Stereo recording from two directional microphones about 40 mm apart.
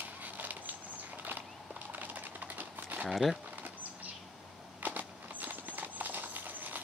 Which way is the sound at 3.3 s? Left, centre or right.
Right.